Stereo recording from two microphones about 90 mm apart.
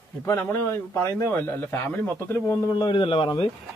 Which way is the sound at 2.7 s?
55° left (ahead or behind).